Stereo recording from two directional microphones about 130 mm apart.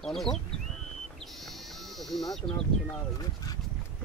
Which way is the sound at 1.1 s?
Centre (ahead or behind).